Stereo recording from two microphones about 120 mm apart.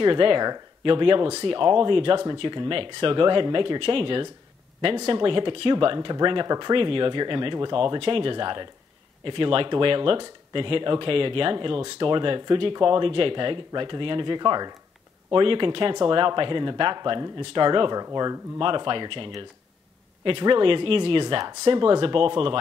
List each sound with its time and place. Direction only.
0.0 s speech: 45° right (ahead or behind)